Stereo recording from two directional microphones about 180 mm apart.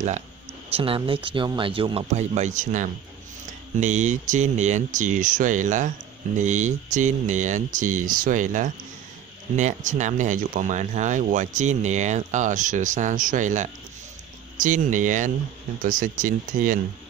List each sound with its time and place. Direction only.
0.7 s a man's voice: 30° right (ahead or behind); by 16.8 s 50° right (ahead or behind)